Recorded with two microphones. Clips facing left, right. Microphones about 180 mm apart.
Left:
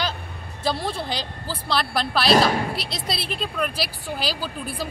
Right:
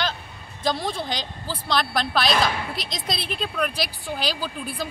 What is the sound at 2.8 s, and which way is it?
A woman's voice, 5° left (ahead or behind).